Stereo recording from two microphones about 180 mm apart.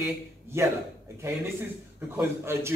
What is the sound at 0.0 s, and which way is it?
Speech, 15° right (ahead or behind).